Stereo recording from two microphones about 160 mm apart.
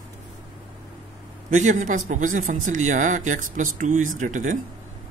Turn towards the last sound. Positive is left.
turn(degrees=-50)  # may be behind; listen again after turning